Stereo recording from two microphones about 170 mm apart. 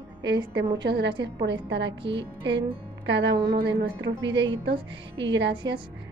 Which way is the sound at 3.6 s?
75° right (ahead or behind).